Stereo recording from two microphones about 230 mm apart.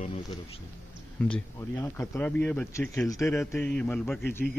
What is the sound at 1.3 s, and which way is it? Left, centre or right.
Speech, centre.